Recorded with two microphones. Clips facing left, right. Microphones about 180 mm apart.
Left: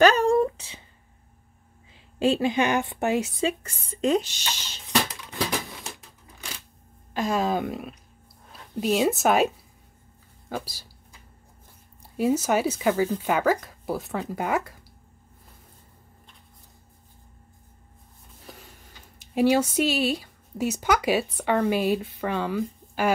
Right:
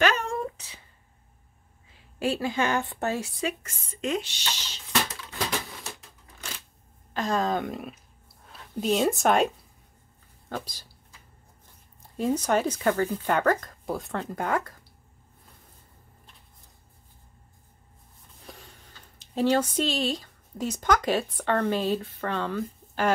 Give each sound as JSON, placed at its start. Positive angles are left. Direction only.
{"t": 0.0, "sound": "a sound", "side_deg": 35}
{"t": 2.1, "sound": "speech", "side_deg": 25}
{"t": 7.2, "sound": "a woman's voice", "side_deg": 10}
{"t": 10.5, "sound": "a sound", "side_deg": 10}
{"t": 12.2, "sound": "speech", "side_deg": 5}
{"t": 18.4, "sound": "speech", "side_deg": 5}